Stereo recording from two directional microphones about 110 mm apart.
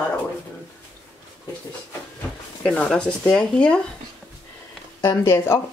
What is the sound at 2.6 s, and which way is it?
Speech, 10° left (ahead or behind).